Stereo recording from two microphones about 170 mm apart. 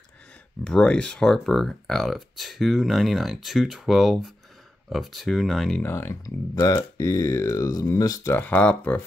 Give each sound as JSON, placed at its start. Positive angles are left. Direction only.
{"t": 0.7, "sound": "speech", "side_deg": 5}
{"t": 5.8, "sound": "speech", "side_deg": 15}